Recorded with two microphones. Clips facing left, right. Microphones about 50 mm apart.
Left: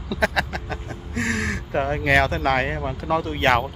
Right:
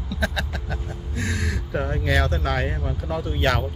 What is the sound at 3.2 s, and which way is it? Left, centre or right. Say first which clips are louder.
Speech: left 2 dB; left.